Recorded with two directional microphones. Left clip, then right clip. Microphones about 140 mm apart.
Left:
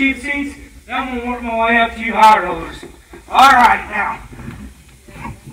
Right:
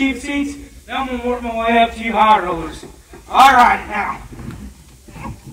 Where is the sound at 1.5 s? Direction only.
25° right (ahead or behind).